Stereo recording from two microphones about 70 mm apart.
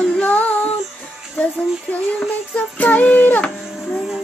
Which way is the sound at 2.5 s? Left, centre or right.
Left.